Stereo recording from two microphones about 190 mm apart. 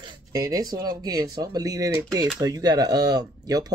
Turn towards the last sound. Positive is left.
turn(degrees=-20)  # may be behind; listen again after turning